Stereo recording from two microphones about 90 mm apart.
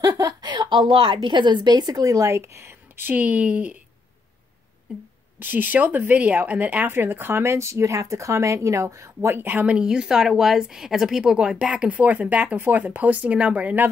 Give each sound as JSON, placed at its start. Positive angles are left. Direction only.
{"t": 0.0, "sound": "a woman's voice", "side_deg": -45}
{"t": 5.4, "sound": "speech", "side_deg": -20}
{"t": 9.8, "sound": "speech", "side_deg": -10}